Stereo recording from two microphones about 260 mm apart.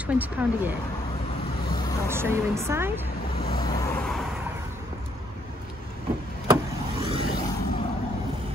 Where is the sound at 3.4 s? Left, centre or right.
Centre.